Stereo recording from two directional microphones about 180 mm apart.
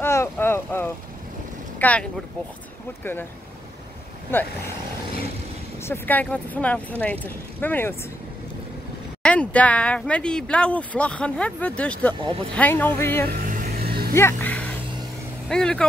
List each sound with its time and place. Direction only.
0.0 s boat: 15° left (ahead or behind)
1.8 s speech: 10° left (ahead or behind)
5.8 s speech: 10° left (ahead or behind)
9.2 s speech: 5° left (ahead or behind)
13.3 s music: 50° right (ahead or behind)
14.1 s speech: 10° left (ahead or behind)